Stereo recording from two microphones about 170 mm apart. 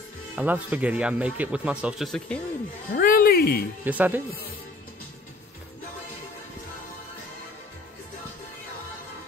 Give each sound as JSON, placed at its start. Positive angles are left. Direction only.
{"t": 0.4, "sound": "speech", "side_deg": -10}
{"t": 2.9, "sound": "a woman's voice", "side_deg": 55}
{"t": 3.8, "sound": "speech", "side_deg": -10}